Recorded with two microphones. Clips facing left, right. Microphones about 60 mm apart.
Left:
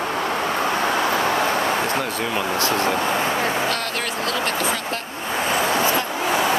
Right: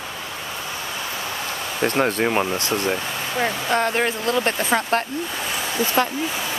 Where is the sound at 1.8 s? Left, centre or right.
Right.